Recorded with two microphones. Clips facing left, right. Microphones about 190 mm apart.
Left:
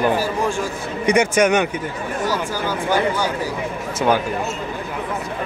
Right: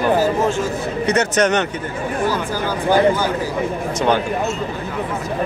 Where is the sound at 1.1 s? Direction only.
10° left (ahead or behind).